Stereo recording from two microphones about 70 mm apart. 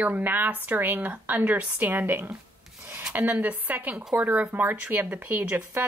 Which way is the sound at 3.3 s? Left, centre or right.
Right.